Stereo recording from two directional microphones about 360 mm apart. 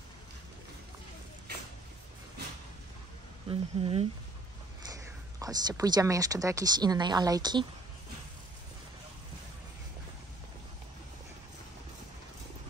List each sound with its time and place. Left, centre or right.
3.4 s speech: centre